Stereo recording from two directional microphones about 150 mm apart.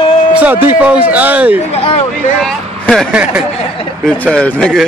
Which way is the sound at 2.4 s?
Centre (ahead or behind).